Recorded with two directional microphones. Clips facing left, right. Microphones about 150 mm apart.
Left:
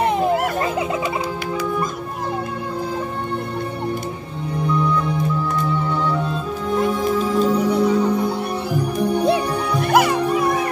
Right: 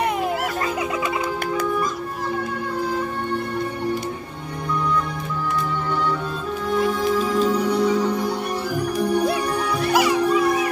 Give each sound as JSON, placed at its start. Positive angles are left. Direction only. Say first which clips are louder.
{"t": 7.1, "sound": "music", "louder": "left 2 dB", "side_deg": 35}
{"t": 9.8, "sound": "music", "louder": "left 2 dB", "side_deg": 55}